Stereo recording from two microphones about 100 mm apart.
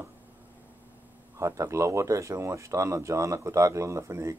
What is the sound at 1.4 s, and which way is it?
Speech, 30° right (ahead or behind).